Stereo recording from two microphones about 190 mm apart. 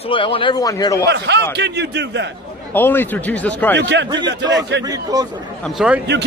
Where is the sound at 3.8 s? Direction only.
65° right (ahead or behind).